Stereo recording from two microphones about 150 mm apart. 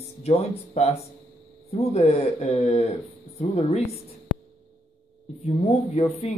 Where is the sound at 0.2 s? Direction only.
45° left (ahead or behind).